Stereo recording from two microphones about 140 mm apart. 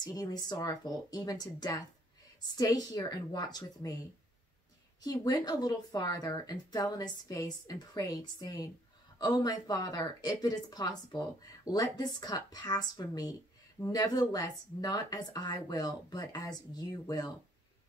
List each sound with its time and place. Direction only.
0.0 s speech: 30° left (ahead or behind)
5.0 s speech: 25° left (ahead or behind)